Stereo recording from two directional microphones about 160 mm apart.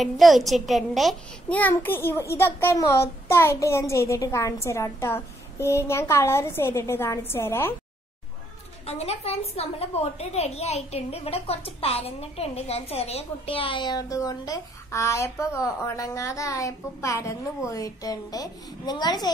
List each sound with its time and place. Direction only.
0.0 s a child's voice: centre (ahead or behind)
8.8 s a woman's voice: 40° left (ahead or behind); by 19.3 s 25° left (ahead or behind)